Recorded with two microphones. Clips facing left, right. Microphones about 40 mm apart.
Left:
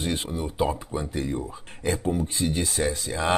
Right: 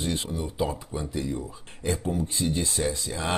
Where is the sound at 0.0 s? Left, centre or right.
Left.